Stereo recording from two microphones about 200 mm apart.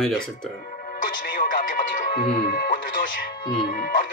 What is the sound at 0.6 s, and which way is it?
Music, 45° left (ahead or behind).